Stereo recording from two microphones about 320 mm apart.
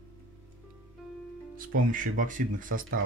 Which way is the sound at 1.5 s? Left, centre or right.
Right.